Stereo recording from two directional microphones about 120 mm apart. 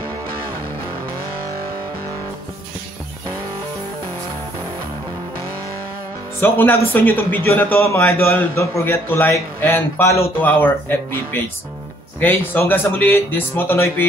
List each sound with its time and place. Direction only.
6.4 s a man's voice: 20° left (ahead or behind)